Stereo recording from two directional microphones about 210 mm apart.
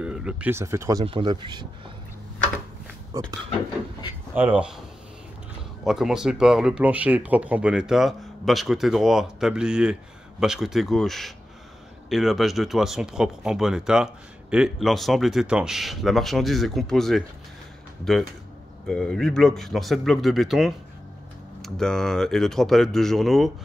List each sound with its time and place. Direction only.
0.0 s speech: 5° right (ahead or behind); by 1.7 s 20° right (ahead or behind)
3.1 s speech: 20° right (ahead or behind)
4.4 s speech: 5° right (ahead or behind)
5.9 s speech: centre (ahead or behind)
18.9 s speech: 5° left (ahead or behind)